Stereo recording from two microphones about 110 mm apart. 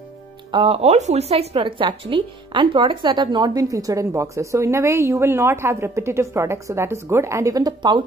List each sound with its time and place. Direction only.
0.5 s speech: 55° right (ahead or behind); by 8.0 s 40° right (ahead or behind)